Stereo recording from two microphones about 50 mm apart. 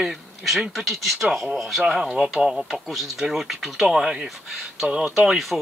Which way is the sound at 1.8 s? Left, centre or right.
Centre.